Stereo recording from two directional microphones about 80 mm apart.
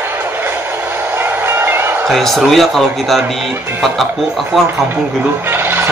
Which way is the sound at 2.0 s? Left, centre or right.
Centre.